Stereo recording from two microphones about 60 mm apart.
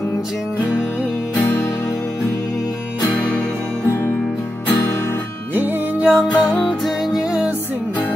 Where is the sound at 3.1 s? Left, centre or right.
Left.